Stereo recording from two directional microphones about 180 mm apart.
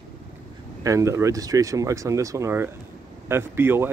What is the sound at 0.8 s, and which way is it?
Speech, 15° right (ahead or behind).